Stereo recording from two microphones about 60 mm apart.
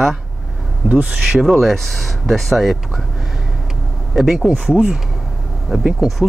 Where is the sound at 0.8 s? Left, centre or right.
Right.